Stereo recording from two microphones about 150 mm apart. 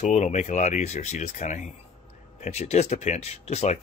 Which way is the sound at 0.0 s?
50° left (ahead or behind).